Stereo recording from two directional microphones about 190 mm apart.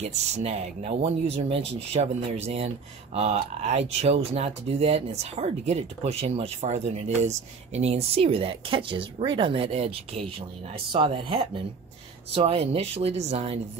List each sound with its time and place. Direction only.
0.0 s speech: 35° right (ahead or behind)